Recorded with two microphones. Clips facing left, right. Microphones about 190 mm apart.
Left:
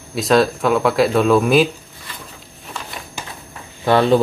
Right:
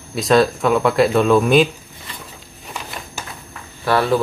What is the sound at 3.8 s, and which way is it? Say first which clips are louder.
Speech: left 3 dB; 20° left (ahead or behind).